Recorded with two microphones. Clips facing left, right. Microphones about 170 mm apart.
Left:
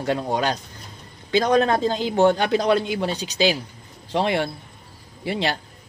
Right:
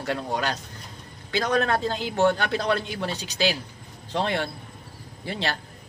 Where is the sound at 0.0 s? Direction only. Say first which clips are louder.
Left 5 dB; 20° left (ahead or behind).